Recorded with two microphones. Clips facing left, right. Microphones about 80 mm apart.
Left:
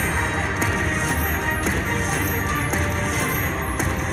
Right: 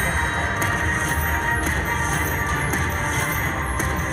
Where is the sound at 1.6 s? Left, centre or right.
Right.